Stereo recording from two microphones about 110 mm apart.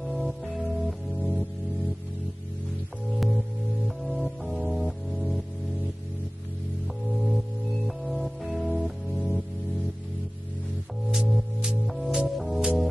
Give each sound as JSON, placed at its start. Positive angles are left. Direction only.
{"t": 0.0, "sound": "music", "side_deg": 0}
{"t": 3.1, "sound": "music", "side_deg": 0}
{"t": 7.1, "sound": "music", "side_deg": 0}
{"t": 11.1, "sound": "music", "side_deg": -5}